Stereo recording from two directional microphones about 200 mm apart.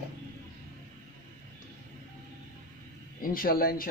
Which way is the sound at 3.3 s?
45° left (ahead or behind).